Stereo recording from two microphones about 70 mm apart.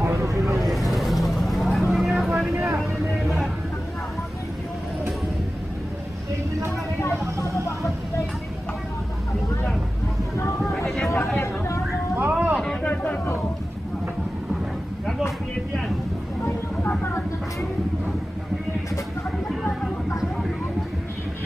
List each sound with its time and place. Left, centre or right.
0.1 s vehicle: right
0.7 s vehicle: centre
2.5 s vehicle: right
3.2 s vehicle: centre
11.3 s a sound: left
12.2 s vehicle: right
12.8 s a sound: left